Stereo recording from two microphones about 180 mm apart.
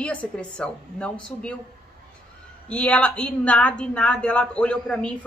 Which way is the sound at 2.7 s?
5° left (ahead or behind).